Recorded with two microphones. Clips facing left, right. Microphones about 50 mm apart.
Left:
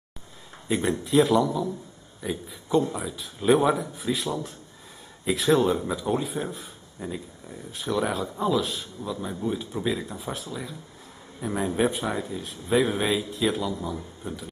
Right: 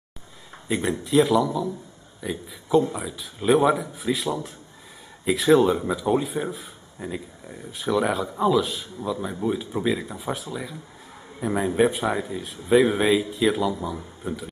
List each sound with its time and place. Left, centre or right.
0.7 s speech: centre